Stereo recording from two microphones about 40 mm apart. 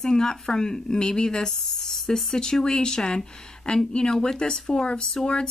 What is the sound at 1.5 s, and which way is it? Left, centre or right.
Speech, centre.